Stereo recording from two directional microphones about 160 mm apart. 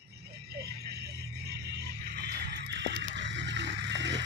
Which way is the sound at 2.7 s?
90° right.